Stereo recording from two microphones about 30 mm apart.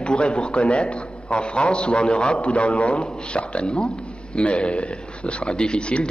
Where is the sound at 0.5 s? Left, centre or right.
Left.